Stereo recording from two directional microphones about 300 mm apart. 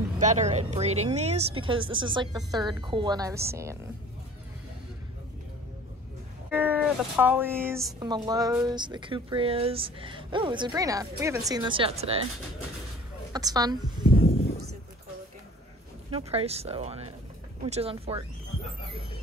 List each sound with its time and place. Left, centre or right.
0.2 s speech: right
6.5 s speech: centre
13.3 s speech: centre
16.1 s speech: centre